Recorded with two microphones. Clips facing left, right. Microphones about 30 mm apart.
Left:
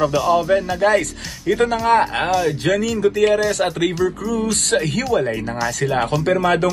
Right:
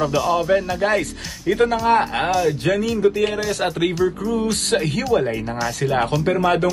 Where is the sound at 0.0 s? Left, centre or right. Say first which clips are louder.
Left 2 dB; centre.